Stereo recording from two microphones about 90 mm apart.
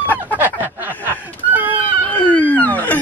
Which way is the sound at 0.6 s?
20° right (ahead or behind).